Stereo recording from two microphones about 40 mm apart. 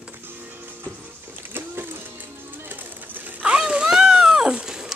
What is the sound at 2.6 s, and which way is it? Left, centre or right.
Bird, right.